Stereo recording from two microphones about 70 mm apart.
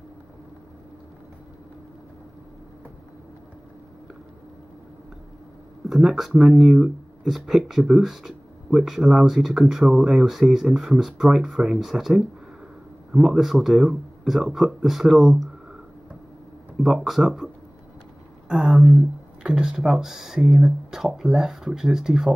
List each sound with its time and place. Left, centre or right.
5.9 s speech: centre
16.7 s speech: centre
18.5 s speech: centre
19.4 s speech: centre